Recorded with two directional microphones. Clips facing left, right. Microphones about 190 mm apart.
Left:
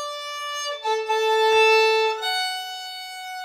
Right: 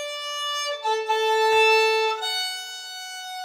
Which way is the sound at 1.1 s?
25° right (ahead or behind).